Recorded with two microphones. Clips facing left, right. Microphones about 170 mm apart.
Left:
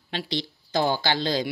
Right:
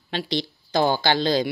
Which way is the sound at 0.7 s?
70° right (ahead or behind).